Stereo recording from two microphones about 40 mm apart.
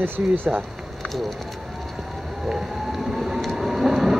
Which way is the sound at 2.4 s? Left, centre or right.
Centre.